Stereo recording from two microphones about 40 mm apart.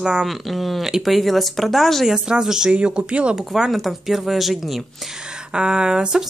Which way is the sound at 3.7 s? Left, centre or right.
Centre.